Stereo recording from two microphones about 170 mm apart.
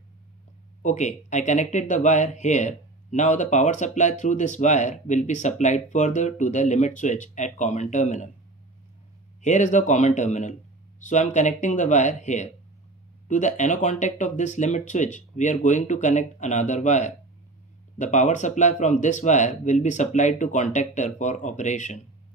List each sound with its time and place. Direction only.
0.8 s speech: 45° left (ahead or behind)
9.4 s speech: 45° left (ahead or behind)